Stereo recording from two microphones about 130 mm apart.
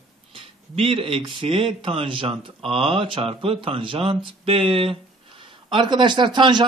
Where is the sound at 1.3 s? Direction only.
45° right (ahead or behind).